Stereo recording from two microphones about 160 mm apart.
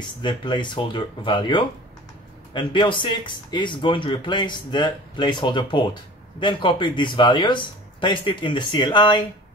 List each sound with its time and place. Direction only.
0.2 s speech: 30° left (ahead or behind)